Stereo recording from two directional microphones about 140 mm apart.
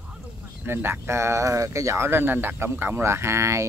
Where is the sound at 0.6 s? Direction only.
15° right (ahead or behind).